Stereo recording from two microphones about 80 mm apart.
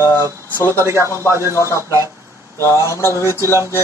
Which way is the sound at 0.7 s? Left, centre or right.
Right.